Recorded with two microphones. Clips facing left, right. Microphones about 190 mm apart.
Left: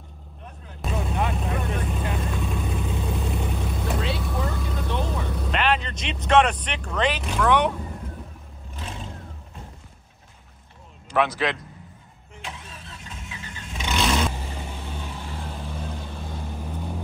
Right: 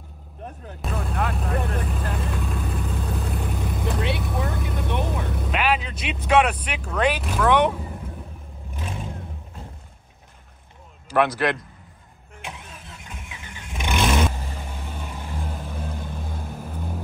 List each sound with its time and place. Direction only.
0.8 s vehicle: centre (ahead or behind)
4.3 s vehicle: 15° right (ahead or behind)
5.4 s vehicle: 5° right (ahead or behind)
6.2 s speech: 5° right (ahead or behind)
11.1 s speech: 10° right (ahead or behind)
12.4 s vehicle: 15° right (ahead or behind)